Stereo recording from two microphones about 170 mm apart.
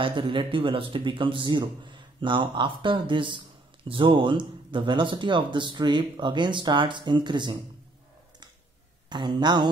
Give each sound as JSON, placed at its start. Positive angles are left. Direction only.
{"t": 0.0, "sound": "speech", "side_deg": -30}
{"t": 9.1, "sound": "speech", "side_deg": -25}